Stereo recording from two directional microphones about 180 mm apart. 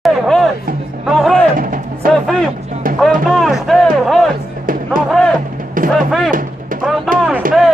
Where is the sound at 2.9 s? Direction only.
50° right (ahead or behind).